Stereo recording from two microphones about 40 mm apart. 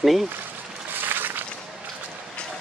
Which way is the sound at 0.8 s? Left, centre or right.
Right.